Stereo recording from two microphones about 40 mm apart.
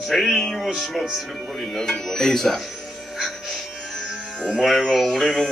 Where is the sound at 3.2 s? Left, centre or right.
Centre.